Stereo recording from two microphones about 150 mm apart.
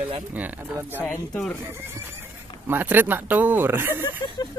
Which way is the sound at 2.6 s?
15° right (ahead or behind).